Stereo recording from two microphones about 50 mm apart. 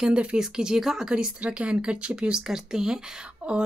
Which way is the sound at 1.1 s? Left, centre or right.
Centre.